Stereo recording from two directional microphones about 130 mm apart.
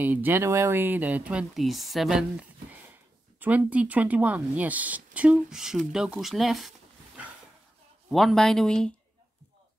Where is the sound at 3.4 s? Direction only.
10° right (ahead or behind); by 8.9 s 5° left (ahead or behind).